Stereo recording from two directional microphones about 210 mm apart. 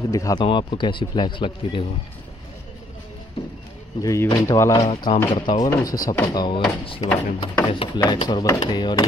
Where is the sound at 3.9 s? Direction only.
15° left (ahead or behind).